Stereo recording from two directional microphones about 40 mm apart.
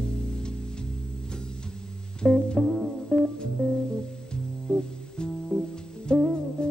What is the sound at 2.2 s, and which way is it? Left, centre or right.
Music, centre.